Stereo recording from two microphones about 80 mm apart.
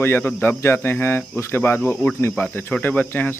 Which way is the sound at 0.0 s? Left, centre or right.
Left.